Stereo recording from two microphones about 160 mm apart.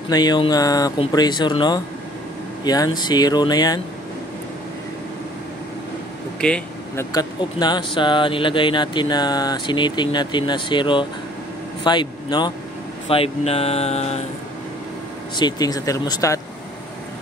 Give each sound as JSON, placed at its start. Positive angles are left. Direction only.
{"t": 0.1, "sound": "speech", "side_deg": 25}
{"t": 6.4, "sound": "speech", "side_deg": 5}
{"t": 7.0, "sound": "a man's voice", "side_deg": 25}
{"t": 13.1, "sound": "speech", "side_deg": 35}
{"t": 15.3, "sound": "speech", "side_deg": 25}